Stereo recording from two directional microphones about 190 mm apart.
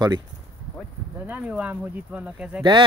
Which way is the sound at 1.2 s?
10° right (ahead or behind).